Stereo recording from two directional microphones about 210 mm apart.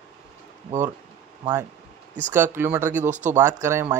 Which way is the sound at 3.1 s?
35° right (ahead or behind).